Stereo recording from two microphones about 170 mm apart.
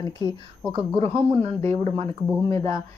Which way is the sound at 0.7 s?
35° right (ahead or behind).